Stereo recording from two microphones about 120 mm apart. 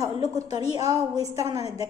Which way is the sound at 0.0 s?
30° right (ahead or behind).